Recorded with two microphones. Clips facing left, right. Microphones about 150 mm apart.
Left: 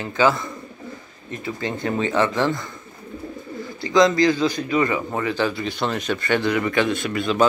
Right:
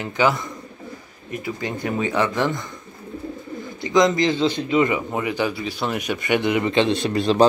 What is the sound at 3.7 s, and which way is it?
Speech, 20° right (ahead or behind).